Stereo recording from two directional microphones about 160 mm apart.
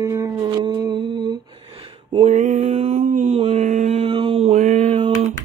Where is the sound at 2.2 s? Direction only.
45° right (ahead or behind).